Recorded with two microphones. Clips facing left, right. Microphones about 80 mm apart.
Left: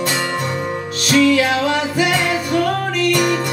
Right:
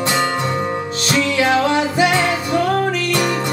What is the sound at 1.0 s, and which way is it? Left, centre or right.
Music, right.